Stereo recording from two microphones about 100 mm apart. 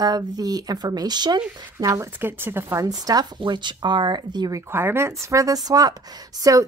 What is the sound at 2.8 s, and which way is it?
Speech, 40° right (ahead or behind).